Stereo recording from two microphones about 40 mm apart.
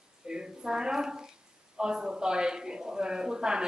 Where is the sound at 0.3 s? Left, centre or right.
Centre.